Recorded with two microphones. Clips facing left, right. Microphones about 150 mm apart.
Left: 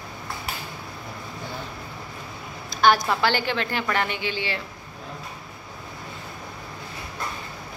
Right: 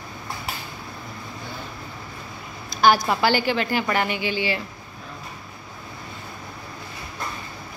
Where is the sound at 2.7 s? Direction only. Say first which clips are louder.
Right 1 dB; 5° right (ahead or behind).